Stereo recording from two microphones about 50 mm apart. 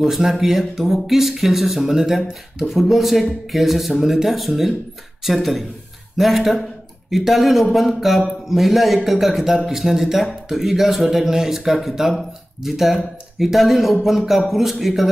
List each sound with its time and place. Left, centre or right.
0.0 s a man's voice: centre